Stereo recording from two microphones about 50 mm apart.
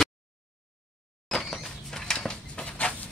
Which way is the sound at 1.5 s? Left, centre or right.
Centre.